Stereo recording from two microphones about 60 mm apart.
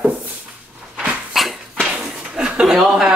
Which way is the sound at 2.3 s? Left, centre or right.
Centre.